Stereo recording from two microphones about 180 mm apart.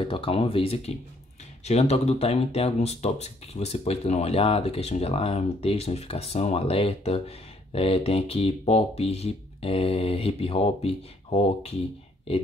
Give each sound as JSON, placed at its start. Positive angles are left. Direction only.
{"t": 0.0, "sound": "speech", "side_deg": 30}